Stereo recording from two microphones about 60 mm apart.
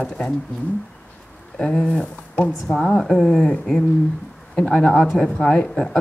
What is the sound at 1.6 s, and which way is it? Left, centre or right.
Speech, centre.